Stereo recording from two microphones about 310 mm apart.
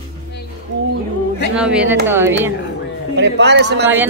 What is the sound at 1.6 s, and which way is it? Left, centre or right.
Speech, centre.